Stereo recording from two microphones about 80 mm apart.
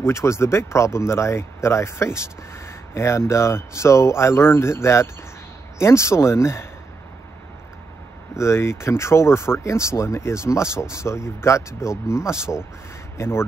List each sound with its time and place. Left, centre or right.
0.0 s speech: left
8.4 s speech: left